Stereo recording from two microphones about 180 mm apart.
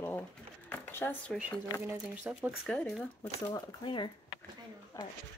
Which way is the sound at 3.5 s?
25° left (ahead or behind).